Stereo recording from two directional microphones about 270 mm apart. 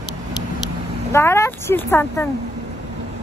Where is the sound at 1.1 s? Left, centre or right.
Centre.